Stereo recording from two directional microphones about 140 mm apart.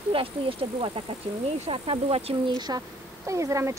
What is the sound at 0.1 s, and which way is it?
Speech, 40° right (ahead or behind).